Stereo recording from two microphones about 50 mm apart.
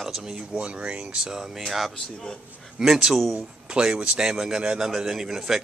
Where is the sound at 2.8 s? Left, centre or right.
Centre.